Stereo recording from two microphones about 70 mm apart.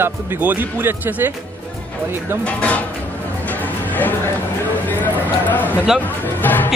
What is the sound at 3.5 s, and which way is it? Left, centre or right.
Music, left.